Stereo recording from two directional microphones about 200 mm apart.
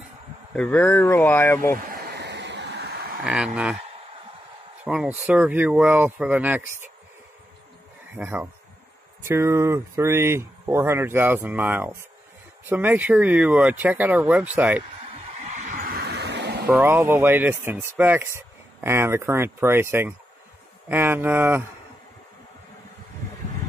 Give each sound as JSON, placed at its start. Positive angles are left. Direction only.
{"t": 0.6, "sound": "speech", "side_deg": 10}
{"t": 1.9, "sound": "a sound", "side_deg": -55}
{"t": 3.3, "sound": "speech", "side_deg": -5}
{"t": 3.7, "sound": "a sound", "side_deg": -25}
{"t": 4.8, "sound": "speech", "side_deg": -5}
{"t": 8.2, "sound": "speech", "side_deg": -10}
{"t": 15.3, "sound": "skidding", "side_deg": -35}
{"t": 16.6, "sound": "speech", "side_deg": -10}